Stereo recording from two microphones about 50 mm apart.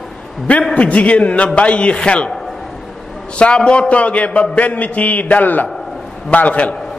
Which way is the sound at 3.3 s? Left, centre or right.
Centre.